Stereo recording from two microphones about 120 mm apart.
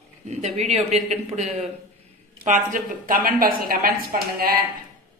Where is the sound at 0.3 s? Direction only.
70° right (ahead or behind).